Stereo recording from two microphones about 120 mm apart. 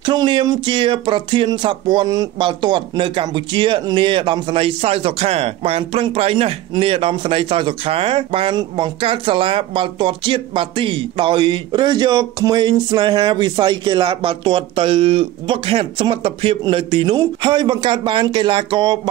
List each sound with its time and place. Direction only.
0.0 s speech: 40° right (ahead or behind)